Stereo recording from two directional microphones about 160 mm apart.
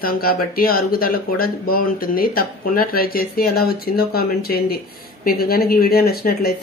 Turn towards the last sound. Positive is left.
turn(degrees=75)  # may be behind; listen again after turning